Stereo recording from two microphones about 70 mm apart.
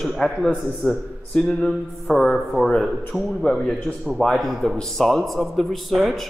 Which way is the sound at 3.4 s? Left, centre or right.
Left.